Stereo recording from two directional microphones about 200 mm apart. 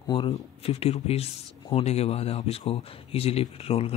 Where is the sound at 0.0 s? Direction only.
25° left (ahead or behind).